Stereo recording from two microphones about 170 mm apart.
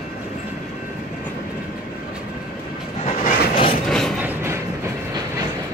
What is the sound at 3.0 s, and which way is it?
Train, 55° left (ahead or behind).